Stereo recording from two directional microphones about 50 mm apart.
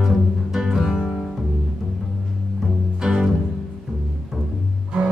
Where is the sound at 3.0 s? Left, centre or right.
Centre.